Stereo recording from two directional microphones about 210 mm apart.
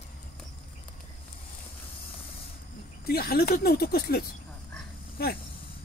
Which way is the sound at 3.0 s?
45° left (ahead or behind).